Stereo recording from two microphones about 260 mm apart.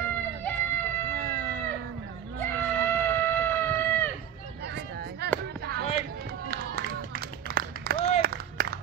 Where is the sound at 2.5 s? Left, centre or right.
Centre.